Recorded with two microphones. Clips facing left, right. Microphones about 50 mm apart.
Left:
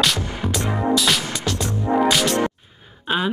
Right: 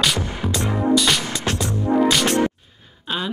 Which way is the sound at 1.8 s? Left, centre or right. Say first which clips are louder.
Right 1 dB; centre.